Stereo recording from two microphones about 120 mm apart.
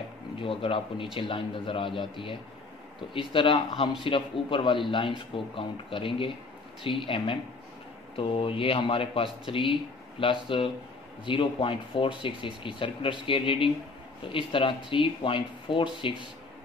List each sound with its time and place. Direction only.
0.4 s speech: 50° left (ahead or behind)